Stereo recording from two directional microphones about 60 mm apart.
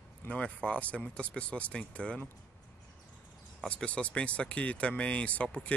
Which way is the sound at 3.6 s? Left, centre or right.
Centre.